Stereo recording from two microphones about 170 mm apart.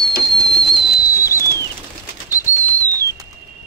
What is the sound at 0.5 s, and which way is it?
Whistling, 30° left (ahead or behind).